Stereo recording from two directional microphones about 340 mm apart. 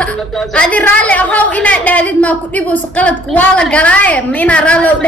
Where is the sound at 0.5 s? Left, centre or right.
Centre.